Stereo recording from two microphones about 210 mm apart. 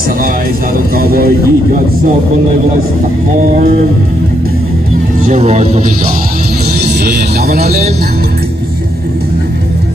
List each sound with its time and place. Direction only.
0.9 s speech: 45° right (ahead or behind)
5.2 s speech: 35° right (ahead or behind)
6.8 s speech: 50° right (ahead or behind)